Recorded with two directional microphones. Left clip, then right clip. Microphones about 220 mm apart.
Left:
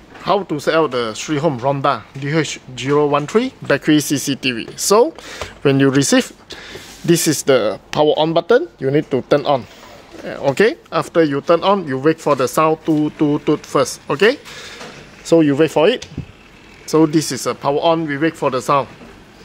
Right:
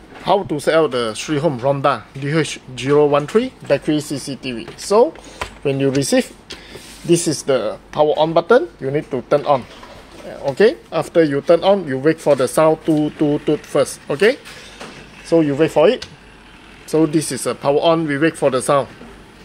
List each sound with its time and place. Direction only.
0.2 s speech: 10° left (ahead or behind)
3.3 s speech: 30° left (ahead or behind)
15.2 s speech: 40° left (ahead or behind)
16.9 s speech: 20° left (ahead or behind); by 18.9 s 5° left (ahead or behind)